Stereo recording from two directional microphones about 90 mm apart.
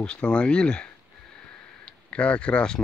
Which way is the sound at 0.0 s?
10° left (ahead or behind).